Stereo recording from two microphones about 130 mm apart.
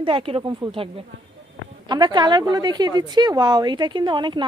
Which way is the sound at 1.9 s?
35° right (ahead or behind).